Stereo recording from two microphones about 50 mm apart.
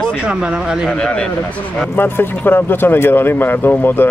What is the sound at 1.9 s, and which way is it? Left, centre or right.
Speech, left.